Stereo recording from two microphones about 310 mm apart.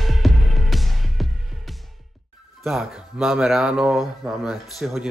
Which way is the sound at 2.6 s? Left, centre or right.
Centre.